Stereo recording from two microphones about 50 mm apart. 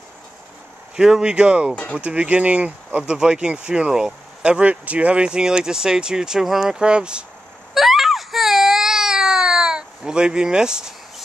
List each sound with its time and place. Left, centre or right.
0.9 s speech: centre; by 3.0 s right
3.0 s speech: centre
7.7 s baby cry: centre